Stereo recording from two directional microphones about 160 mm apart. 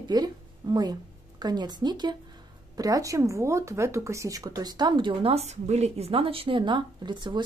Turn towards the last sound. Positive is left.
turn(degrees=-30)  # may be behind; listen again after turning